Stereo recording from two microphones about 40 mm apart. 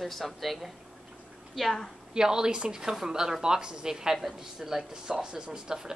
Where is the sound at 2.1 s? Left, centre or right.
Centre.